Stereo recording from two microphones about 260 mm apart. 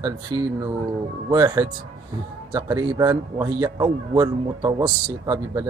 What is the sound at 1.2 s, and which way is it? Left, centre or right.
Speech, centre.